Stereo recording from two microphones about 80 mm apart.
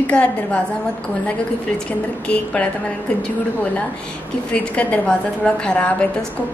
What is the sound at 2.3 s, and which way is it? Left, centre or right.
Speech, centre.